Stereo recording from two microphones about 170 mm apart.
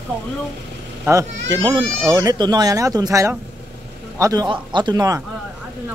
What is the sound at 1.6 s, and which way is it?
Speech, 30° right (ahead or behind).